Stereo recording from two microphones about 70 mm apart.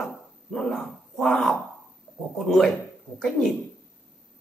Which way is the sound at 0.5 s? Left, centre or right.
Centre.